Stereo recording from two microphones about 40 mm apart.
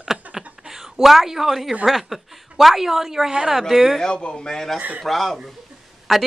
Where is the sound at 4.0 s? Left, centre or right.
Centre.